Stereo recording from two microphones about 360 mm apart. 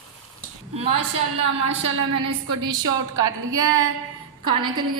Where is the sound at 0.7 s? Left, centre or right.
Centre.